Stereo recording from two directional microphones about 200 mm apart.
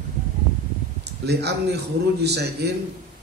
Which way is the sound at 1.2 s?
55° right (ahead or behind).